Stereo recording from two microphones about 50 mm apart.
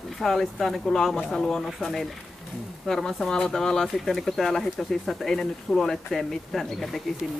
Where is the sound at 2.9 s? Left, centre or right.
Centre.